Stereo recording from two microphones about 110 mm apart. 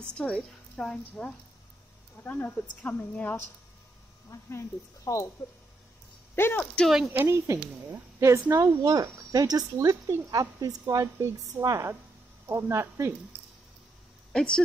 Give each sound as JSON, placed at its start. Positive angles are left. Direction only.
{"t": 0.0, "sound": "a woman's voice", "side_deg": 10}
{"t": 6.3, "sound": "speech", "side_deg": 20}
{"t": 6.6, "sound": "a woman's voice", "side_deg": 10}
{"t": 7.1, "sound": "speech", "side_deg": -25}
{"t": 14.3, "sound": "speech", "side_deg": 5}